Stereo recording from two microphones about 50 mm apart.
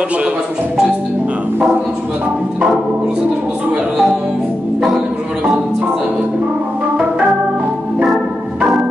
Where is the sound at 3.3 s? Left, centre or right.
Centre.